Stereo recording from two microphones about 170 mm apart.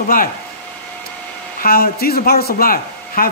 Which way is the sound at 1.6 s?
60° left (ahead or behind).